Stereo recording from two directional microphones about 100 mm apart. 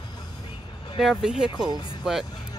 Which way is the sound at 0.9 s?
5° right (ahead or behind).